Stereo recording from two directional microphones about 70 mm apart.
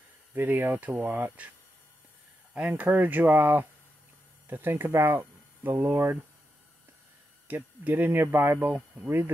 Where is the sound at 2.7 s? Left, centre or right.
Right.